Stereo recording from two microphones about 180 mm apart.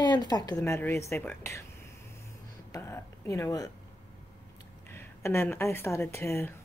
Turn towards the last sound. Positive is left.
turn(degrees=15)  # may be behind; listen again after turning